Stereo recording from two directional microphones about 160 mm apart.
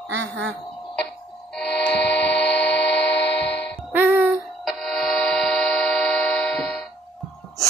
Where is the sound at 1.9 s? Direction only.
90° left.